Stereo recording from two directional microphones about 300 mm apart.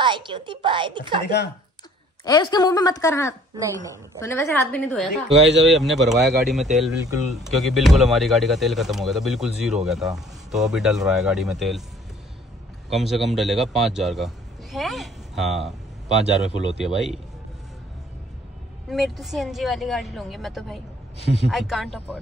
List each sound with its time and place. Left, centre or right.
0.0 s a woman's voice: centre
1.2 s speech: left
2.2 s a woman's voice: centre
3.5 s a woman's voice: centre
4.2 s speech: centre
12.9 s a man's voice: centre
16.8 s speech: centre
18.9 s speech: centre
21.2 s a woman's voice: centre
21.5 s speech: centre